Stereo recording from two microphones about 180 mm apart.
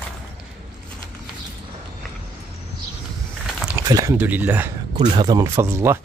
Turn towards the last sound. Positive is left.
turn(degrees=-15)  # may be behind; listen again after turning